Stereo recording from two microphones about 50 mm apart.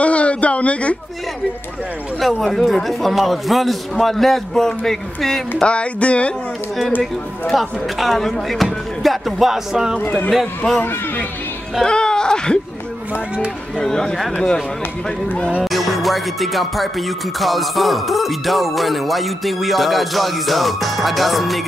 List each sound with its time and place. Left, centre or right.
0.0 s a sound: left
2.1 s music: centre
5.6 s music: left
7.5 s music: centre
9.0 s speech: centre
9.9 s speech: left
11.8 s speech: centre
13.7 s speech: centre
15.6 s music: centre